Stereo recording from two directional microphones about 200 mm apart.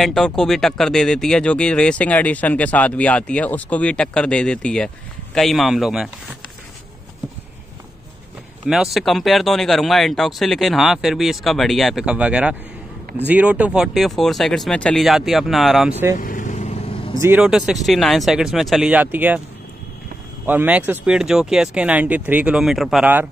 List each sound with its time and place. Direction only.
0.0 s speech: centre (ahead or behind)
8.6 s speech: centre (ahead or behind)
16.2 s vehicle: 40° left (ahead or behind)
17.2 s speech: 5° right (ahead or behind)
20.4 s speech: 10° right (ahead or behind)